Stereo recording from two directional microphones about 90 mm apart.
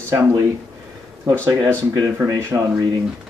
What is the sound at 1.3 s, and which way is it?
Speech, 25° right (ahead or behind).